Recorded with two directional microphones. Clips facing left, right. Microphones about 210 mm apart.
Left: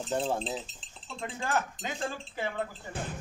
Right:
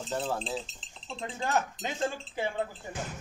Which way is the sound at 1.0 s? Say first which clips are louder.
Right 1 dB; 20° right (ahead or behind).